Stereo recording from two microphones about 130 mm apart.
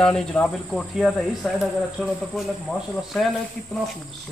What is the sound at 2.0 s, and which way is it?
Insect, 5° left (ahead or behind).